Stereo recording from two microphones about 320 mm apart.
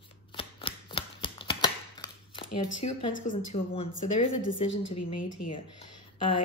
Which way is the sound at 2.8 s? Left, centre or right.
Left.